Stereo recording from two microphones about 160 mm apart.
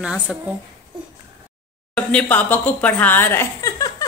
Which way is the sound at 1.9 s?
5° left (ahead or behind).